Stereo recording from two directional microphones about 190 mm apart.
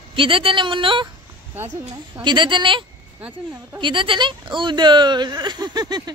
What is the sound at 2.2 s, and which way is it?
Speech, 25° right (ahead or behind).